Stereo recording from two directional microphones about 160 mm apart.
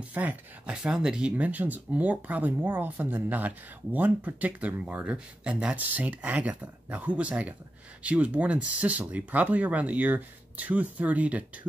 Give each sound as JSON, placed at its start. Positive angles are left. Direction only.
{"t": 0.0, "sound": "speech", "side_deg": -10}